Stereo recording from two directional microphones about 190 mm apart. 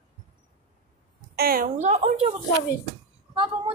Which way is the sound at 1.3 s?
55° right (ahead or behind).